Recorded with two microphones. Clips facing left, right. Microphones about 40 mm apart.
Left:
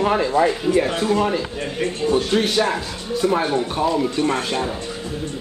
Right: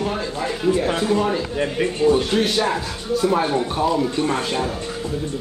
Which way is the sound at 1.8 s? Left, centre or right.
Centre.